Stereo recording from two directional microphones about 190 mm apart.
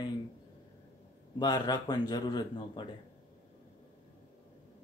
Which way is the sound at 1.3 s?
20° left (ahead or behind).